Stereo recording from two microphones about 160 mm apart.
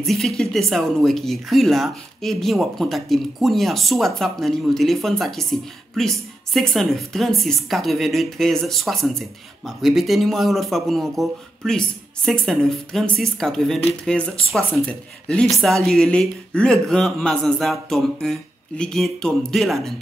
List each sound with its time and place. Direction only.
0.0 s speech: centre (ahead or behind)